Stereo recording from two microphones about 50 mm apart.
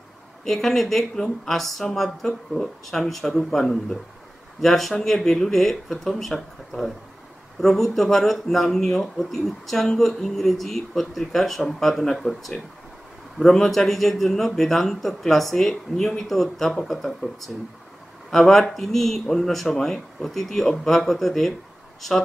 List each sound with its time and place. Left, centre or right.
0.5 s speech: centre